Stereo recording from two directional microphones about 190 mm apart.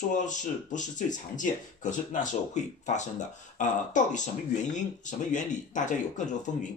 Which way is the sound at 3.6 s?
40° left (ahead or behind).